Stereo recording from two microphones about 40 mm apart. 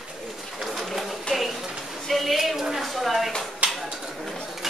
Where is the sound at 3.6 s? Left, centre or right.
Right.